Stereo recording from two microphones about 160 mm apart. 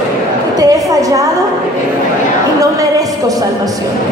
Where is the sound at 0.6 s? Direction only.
25° right (ahead or behind).